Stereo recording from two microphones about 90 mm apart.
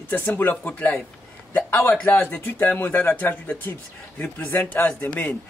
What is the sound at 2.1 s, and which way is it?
A man's voice, 20° left (ahead or behind).